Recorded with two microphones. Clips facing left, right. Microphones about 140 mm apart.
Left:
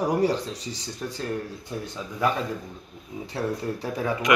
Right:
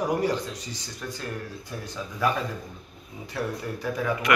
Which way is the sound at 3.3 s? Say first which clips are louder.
Left 2 dB; 30° left (ahead or behind).